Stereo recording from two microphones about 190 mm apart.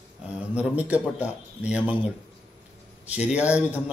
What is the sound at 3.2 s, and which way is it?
Speech, 5° right (ahead or behind).